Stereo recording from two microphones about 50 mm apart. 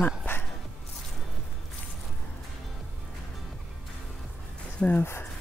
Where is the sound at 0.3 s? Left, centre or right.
Left.